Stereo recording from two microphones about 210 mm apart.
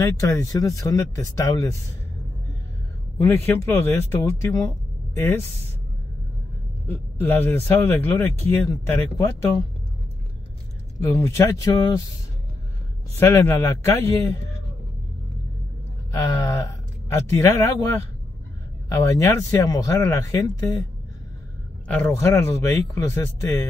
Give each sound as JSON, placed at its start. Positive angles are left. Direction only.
{"t": 0.0, "sound": "speech", "side_deg": 15}
{"t": 3.2, "sound": "speech", "side_deg": 10}
{"t": 6.9, "sound": "speech", "side_deg": 10}
{"t": 11.0, "sound": "speech", "side_deg": 10}
{"t": 13.2, "sound": "speech", "side_deg": 10}
{"t": 16.1, "sound": "speech", "side_deg": 15}
{"t": 18.9, "sound": "speech", "side_deg": 15}
{"t": 21.8, "sound": "speech", "side_deg": 10}